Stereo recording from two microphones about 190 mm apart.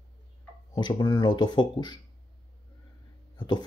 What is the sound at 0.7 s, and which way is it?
Speech, 25° left (ahead or behind).